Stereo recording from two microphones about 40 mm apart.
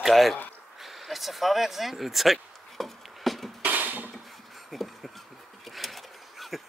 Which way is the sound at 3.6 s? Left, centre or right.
Right.